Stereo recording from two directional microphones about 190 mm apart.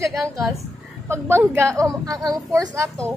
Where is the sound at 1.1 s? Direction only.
15° right (ahead or behind).